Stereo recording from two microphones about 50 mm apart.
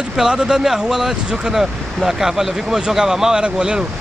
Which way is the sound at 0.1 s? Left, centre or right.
Centre.